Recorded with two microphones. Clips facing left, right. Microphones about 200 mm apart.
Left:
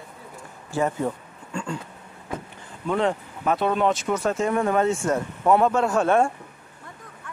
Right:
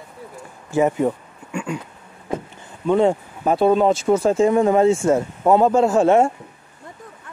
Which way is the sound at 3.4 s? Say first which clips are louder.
Right 6 dB; 30° right (ahead or behind).